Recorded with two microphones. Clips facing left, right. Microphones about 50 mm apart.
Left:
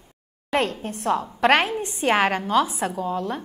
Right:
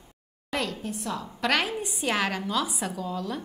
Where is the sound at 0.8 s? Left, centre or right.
Left.